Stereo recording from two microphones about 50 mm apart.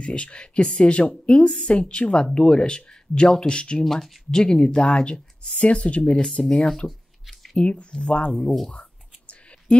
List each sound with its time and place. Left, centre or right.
0.0 s speech: left
3.8 s speech: centre
4.4 s speech: centre
6.9 s a sound: centre
7.5 s speech: left
8.3 s speech: centre
9.3 s a sound: left